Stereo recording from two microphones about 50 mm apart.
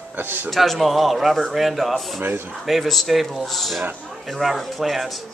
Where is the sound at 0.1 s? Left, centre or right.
Right.